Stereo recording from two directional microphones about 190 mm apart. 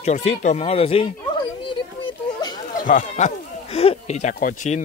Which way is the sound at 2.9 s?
40° left (ahead or behind).